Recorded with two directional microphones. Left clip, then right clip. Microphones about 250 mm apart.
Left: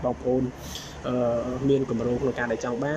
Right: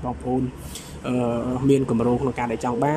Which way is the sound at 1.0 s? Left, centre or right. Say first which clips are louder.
Right 1 dB; centre.